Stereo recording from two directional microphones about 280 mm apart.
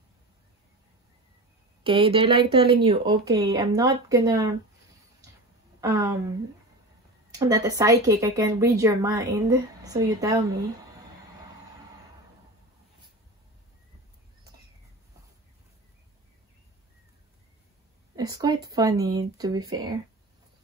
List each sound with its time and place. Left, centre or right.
1.8 s speech: centre
5.8 s speech: centre
7.3 s speech: centre
18.1 s speech: centre